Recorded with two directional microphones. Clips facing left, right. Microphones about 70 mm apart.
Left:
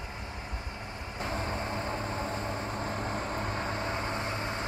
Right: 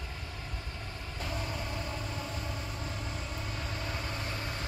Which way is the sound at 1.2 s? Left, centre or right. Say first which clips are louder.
Left 4 dB; left.